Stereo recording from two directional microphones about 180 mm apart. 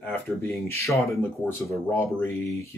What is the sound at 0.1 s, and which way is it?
Speech, 15° left (ahead or behind).